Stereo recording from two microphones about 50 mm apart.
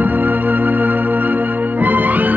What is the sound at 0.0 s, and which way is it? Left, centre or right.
Music, right.